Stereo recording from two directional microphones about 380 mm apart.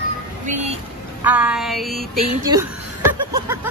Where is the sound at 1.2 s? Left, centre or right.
Centre.